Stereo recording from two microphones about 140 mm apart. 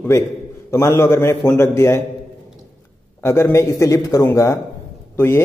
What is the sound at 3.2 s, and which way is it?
A man's voice, 20° left (ahead or behind).